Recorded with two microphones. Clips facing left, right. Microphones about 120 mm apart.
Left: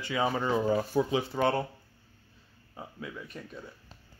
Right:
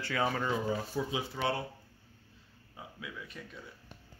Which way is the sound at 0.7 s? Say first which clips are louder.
Left 7 dB; 55° left (ahead or behind).